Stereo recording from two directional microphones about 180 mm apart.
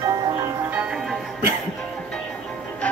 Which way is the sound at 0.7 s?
Centre (ahead or behind).